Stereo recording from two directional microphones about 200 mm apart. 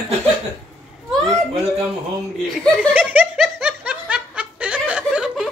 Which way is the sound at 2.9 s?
5° right (ahead or behind).